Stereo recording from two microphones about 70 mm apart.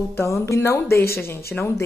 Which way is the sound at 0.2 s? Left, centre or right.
Left.